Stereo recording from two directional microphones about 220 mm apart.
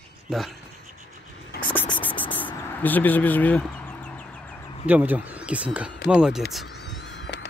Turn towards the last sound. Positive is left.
turn(degrees=55)  # may be behind; listen again after turning